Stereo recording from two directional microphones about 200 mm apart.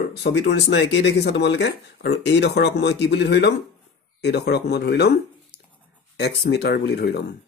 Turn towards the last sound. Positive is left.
turn(degrees=55)  # may be behind; listen again after turning